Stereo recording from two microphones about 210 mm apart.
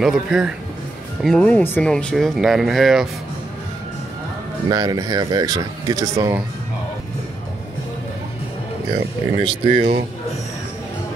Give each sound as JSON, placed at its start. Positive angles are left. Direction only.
{"t": 0.0, "sound": "speech", "side_deg": 0}
{"t": 4.6, "sound": "speech", "side_deg": -20}
{"t": 9.4, "sound": "speech", "side_deg": -25}